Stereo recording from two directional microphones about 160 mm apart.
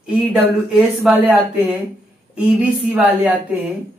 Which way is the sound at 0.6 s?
5° right (ahead or behind).